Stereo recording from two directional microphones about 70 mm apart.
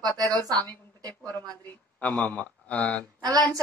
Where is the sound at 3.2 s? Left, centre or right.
Right.